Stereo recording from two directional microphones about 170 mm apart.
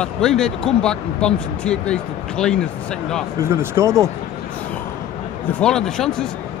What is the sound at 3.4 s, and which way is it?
Speech, 15° right (ahead or behind).